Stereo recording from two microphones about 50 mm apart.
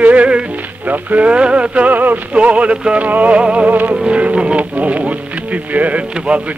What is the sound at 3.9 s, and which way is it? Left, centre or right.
Speech, right.